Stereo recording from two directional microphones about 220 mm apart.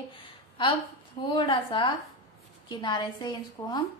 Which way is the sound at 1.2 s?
20° left (ahead or behind).